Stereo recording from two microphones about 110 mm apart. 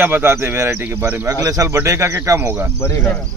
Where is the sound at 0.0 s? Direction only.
20° right (ahead or behind).